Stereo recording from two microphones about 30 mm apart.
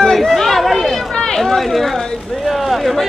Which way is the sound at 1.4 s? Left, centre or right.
Centre.